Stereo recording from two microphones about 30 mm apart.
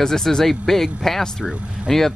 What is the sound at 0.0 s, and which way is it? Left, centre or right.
Speech, centre.